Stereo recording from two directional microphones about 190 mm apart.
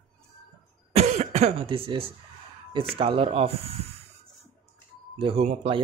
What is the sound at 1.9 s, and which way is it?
Speech, 30° right (ahead or behind).